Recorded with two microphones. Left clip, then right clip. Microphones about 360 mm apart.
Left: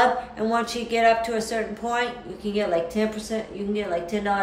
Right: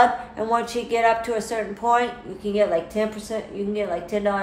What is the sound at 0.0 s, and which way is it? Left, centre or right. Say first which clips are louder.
Speech: right 2 dB; centre.